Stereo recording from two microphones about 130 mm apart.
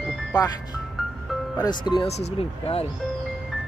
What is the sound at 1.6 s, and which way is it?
Speech, 35° left (ahead or behind).